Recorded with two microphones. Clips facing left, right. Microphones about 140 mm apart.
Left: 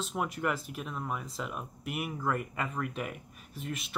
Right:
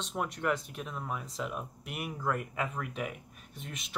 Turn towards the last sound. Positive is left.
turn(degrees=0)  # may be behind; listen again after turning